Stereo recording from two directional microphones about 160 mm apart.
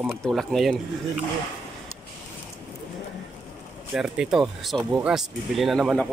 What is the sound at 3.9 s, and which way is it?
Speech, 5° right (ahead or behind).